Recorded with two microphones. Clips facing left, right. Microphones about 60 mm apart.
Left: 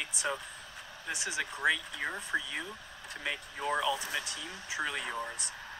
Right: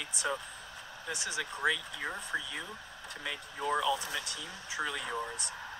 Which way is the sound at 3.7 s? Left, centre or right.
Centre.